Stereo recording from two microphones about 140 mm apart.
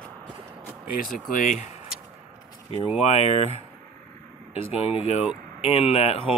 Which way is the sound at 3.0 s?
50° left (ahead or behind).